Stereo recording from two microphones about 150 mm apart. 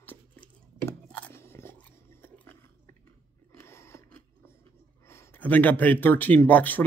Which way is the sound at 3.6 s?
15° left (ahead or behind).